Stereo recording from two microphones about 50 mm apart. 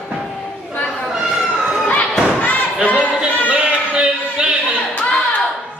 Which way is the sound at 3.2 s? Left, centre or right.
Right.